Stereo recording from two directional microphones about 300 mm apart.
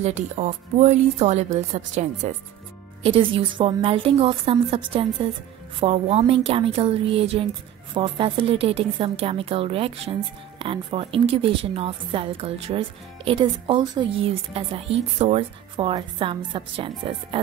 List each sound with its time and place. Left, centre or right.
0.0 s a woman's voice: right